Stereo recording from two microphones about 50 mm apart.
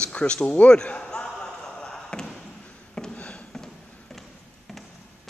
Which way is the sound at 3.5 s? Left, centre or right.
Centre.